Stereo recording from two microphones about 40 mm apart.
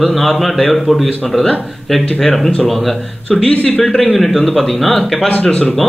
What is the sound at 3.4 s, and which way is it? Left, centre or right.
Speech, left.